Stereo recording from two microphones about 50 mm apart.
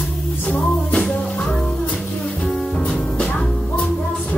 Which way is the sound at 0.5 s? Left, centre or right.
Centre.